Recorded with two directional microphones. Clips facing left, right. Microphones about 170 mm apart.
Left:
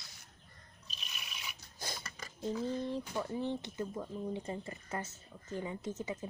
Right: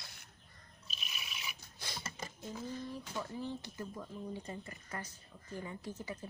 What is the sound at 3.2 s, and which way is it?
Speech, 25° left (ahead or behind).